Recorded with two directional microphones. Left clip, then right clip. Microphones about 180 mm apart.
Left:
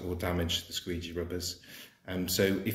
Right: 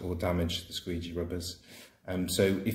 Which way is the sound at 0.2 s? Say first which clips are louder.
Right 1 dB; 35° right (ahead or behind).